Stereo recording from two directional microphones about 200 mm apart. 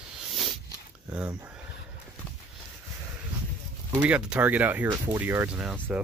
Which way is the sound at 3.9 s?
5° right (ahead or behind).